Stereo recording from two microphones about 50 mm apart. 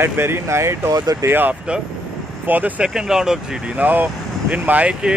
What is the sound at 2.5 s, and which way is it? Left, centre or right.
Speech, right.